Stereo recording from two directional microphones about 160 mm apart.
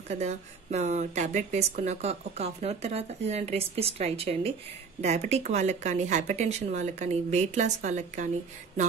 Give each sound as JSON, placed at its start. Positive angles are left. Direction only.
{"t": 0.1, "sound": "speech", "side_deg": -45}